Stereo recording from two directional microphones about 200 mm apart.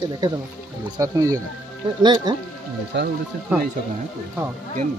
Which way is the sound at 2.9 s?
60° right (ahead or behind).